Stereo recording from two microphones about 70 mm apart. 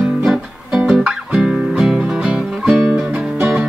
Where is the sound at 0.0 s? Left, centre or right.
Centre.